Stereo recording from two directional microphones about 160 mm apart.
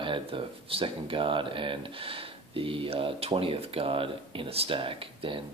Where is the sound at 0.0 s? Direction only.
35° right (ahead or behind).